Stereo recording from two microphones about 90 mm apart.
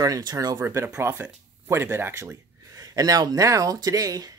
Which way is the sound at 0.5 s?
30° right (ahead or behind).